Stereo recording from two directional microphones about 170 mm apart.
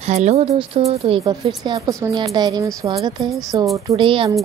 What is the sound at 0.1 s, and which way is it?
Speech, 40° right (ahead or behind).